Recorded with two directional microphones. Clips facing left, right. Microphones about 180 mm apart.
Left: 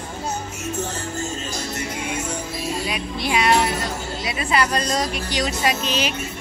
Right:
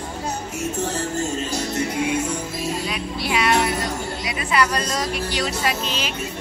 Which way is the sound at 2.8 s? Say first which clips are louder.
Left 1 dB; 20° left (ahead or behind).